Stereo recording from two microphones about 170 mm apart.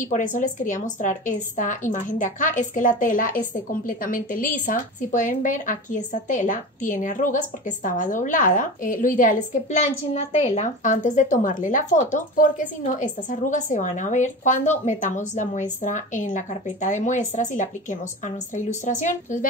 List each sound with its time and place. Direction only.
0.0 s a woman's voice: 50° left (ahead or behind)